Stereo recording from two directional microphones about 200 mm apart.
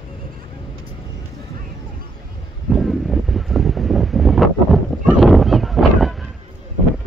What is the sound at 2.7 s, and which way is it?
Wind noise, centre (ahead or behind).